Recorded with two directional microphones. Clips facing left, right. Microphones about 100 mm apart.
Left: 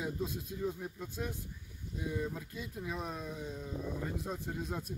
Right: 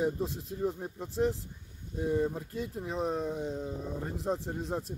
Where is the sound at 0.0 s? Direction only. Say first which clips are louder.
Right 6 dB; 35° right (ahead or behind).